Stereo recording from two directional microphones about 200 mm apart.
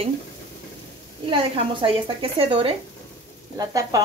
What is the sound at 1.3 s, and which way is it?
Speech, 25° right (ahead or behind).